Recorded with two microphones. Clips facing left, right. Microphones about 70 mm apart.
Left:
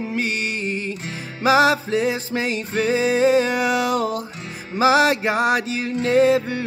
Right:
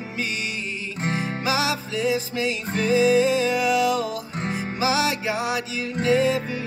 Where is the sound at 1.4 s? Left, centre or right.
Left.